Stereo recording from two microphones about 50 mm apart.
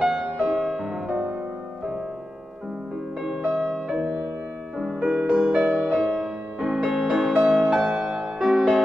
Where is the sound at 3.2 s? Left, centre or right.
Centre.